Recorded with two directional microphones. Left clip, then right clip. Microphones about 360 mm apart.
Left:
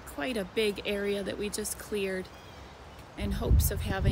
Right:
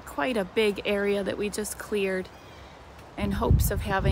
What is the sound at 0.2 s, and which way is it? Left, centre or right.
Speech, centre.